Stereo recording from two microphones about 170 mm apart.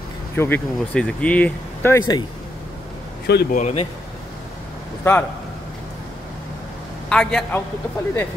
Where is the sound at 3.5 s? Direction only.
45° left (ahead or behind).